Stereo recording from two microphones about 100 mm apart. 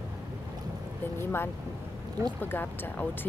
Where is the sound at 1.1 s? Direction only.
25° left (ahead or behind).